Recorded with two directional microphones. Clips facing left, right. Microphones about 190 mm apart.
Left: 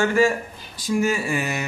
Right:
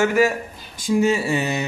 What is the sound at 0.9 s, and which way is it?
Speech, 25° right (ahead or behind).